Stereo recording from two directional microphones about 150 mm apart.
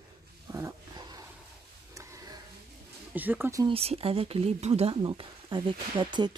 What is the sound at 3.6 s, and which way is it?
Speech, 40° right (ahead or behind).